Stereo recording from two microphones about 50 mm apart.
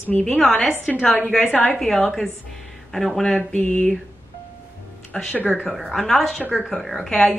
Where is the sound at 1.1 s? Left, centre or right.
Left.